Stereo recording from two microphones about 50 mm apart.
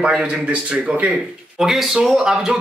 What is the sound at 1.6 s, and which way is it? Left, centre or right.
Speech, centre.